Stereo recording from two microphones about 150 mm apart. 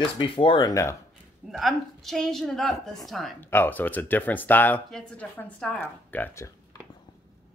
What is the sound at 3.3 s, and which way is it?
Speech, 15° left (ahead or behind).